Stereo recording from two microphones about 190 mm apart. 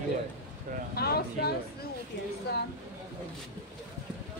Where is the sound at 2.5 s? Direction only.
60° left (ahead or behind).